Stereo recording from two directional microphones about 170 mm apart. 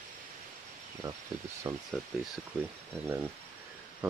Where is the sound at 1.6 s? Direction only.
25° right (ahead or behind).